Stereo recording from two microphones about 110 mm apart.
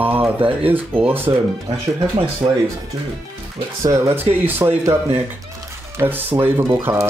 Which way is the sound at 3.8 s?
30° right (ahead or behind).